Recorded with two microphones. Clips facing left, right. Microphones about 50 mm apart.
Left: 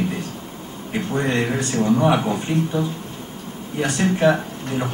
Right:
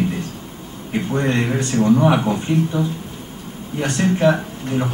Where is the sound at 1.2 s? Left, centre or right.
Centre.